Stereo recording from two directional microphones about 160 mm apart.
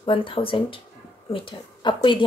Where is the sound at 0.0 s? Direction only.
35° left (ahead or behind).